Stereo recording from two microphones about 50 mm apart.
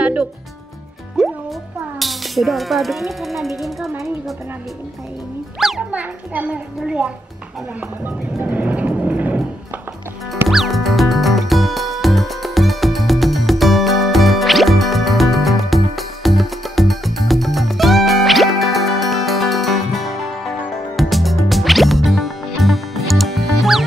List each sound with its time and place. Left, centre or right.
0.0 s music: right
1.2 s speech: centre
5.8 s a child's voice: right
8.0 s vehicle: right
10.5 s music: centre